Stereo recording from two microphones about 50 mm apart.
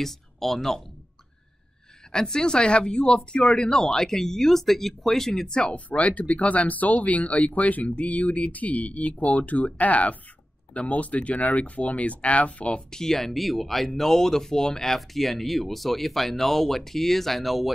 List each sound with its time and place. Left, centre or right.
0.0 s speech: centre
2.1 s speech: centre
5.9 s speech: left
13.0 s speech: centre